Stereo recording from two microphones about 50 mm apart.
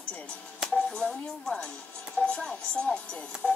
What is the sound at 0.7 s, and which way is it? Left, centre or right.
Music, centre.